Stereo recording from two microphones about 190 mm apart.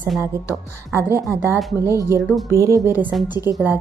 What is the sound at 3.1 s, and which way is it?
Speech, centre (ahead or behind).